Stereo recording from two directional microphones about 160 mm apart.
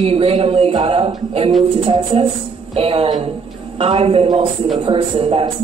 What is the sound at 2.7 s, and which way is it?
Speech, 35° right (ahead or behind).